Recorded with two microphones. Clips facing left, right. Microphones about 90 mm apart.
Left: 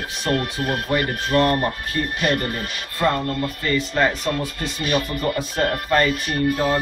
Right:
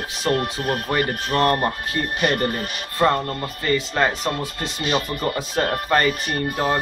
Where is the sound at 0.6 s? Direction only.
45° right (ahead or behind).